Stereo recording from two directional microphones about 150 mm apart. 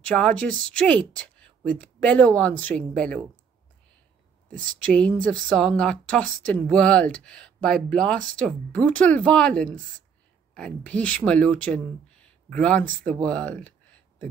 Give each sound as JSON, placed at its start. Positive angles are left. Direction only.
{"t": 0.1, "sound": "speech", "side_deg": 5}
{"t": 0.8, "sound": "a sound", "side_deg": 5}
{"t": 1.8, "sound": "speech", "side_deg": 10}
{"t": 4.6, "sound": "speech", "side_deg": -60}
{"t": 4.9, "sound": "speech", "side_deg": 10}
{"t": 10.5, "sound": "speech", "side_deg": 5}